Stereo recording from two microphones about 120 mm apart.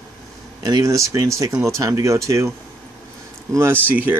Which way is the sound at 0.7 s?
30° right (ahead or behind).